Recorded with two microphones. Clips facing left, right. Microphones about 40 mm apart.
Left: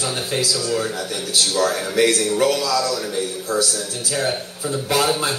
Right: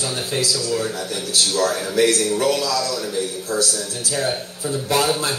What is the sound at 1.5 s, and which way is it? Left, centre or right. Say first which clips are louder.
A man's voice: even; centre.